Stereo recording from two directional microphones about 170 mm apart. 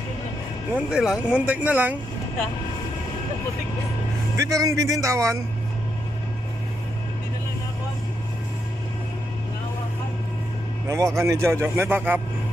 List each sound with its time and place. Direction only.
0.7 s speech: 5° right (ahead or behind)
4.4 s speech: 20° right (ahead or behind)
10.9 s speech: 15° right (ahead or behind)